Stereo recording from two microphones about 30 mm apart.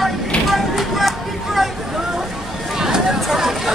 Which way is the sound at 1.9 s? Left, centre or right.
Centre.